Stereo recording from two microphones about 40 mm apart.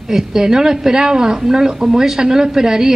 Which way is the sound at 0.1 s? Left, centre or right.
Centre.